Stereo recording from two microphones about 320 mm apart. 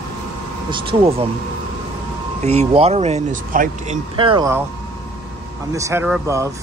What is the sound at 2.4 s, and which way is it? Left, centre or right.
Speech, centre.